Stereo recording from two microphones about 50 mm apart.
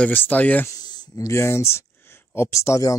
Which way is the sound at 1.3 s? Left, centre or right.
Left.